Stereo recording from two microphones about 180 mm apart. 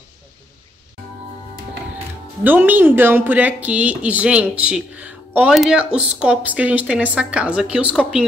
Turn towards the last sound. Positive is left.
turn(degrees=-5)  # may be behind; listen again after turning